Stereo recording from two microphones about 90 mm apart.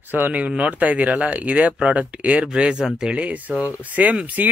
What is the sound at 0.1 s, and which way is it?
Speech, 20° right (ahead or behind).